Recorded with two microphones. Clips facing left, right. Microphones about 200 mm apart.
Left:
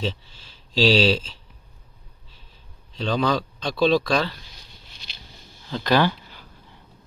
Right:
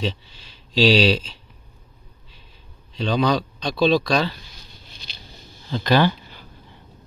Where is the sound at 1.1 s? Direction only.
65° right (ahead or behind).